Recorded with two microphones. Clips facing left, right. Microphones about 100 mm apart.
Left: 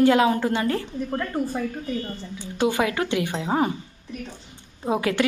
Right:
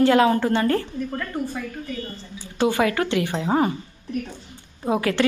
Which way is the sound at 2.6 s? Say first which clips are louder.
Right 2 dB; 15° left (ahead or behind).